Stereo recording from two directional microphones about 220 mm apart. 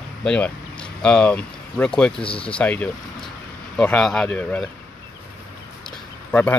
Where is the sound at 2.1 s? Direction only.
25° left (ahead or behind).